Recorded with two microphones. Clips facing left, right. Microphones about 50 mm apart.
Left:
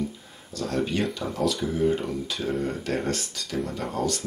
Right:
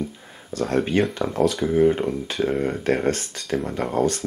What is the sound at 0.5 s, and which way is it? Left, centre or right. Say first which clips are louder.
Speech: right 5 dB; right.